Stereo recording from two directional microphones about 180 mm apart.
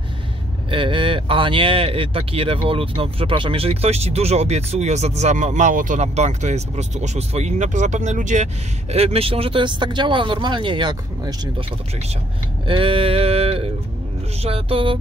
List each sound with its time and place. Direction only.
0.7 s speech: 30° right (ahead or behind)
12.6 s speech: 30° right (ahead or behind)